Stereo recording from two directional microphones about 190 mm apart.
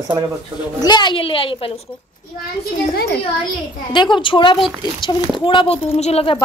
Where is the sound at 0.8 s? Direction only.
25° left (ahead or behind).